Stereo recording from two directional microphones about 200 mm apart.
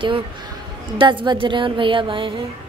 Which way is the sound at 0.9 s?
25° right (ahead or behind).